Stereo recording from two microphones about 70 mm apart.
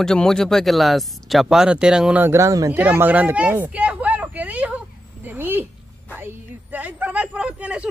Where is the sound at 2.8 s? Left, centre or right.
Right.